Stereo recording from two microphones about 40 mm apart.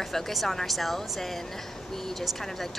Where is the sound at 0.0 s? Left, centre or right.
Centre.